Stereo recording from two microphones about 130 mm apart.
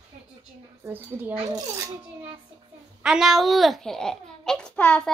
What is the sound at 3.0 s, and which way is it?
A child's voice, 5° right (ahead or behind).